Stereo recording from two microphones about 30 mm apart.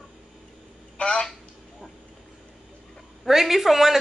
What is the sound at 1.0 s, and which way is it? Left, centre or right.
Speech, left.